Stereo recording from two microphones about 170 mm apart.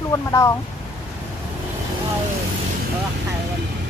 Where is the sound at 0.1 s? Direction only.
20° left (ahead or behind).